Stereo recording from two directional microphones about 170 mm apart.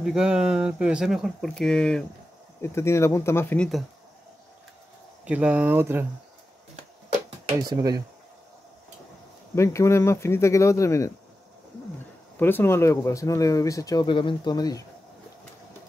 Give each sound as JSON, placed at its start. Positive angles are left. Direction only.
{"t": 0.0, "sound": "speech", "side_deg": -5}
{"t": 2.6, "sound": "speech", "side_deg": 15}
{"t": 5.2, "sound": "speech", "side_deg": -10}
{"t": 7.6, "sound": "speech", "side_deg": -20}
{"t": 9.6, "sound": "speech", "side_deg": 15}
{"t": 12.4, "sound": "speech", "side_deg": 10}